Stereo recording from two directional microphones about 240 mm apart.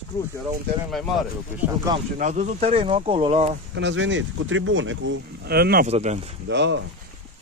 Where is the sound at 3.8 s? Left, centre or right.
Right.